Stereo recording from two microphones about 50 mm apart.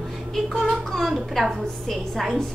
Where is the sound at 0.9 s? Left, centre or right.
Centre.